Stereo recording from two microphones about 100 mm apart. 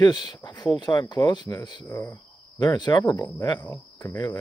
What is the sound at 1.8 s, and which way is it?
Speech, 30° left (ahead or behind).